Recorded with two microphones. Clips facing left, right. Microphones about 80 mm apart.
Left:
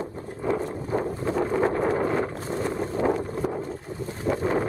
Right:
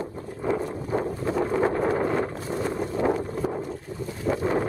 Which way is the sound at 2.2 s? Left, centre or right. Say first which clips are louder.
Even; centre.